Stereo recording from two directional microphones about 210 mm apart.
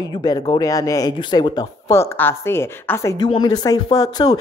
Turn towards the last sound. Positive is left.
turn(degrees=20)  # may be behind; listen again after turning